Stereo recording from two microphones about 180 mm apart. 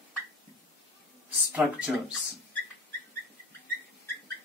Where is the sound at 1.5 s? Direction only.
Centre (ahead or behind).